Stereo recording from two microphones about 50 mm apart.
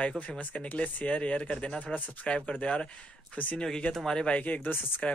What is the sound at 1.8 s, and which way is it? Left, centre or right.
Speech, left.